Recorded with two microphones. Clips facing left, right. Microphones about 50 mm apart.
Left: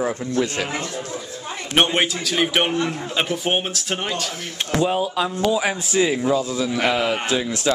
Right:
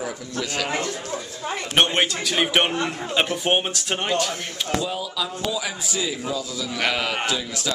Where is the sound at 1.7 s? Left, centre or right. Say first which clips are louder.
Left 2 dB; centre.